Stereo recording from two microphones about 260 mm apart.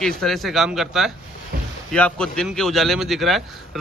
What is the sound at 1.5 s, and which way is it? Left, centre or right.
Boat, right.